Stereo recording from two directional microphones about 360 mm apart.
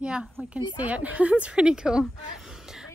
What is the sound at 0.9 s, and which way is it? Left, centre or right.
A woman's voice, centre.